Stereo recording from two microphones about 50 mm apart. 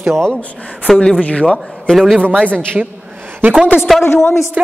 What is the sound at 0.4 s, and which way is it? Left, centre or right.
Speech, left.